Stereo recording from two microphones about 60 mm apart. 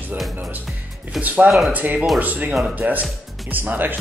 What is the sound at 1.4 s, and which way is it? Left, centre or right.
Speech, centre.